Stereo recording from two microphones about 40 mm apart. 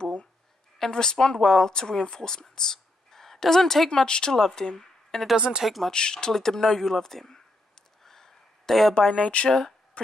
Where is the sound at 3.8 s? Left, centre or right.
Centre.